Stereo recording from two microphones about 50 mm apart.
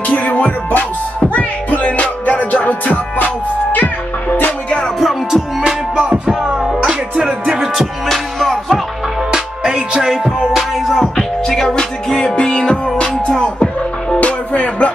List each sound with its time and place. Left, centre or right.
0.0 s music: left
4.9 s music: centre
5.6 s music: centre
7.2 s music: centre
8.1 s music: centre
9.3 s music: centre
11.1 s music: centre; by 14.9 s left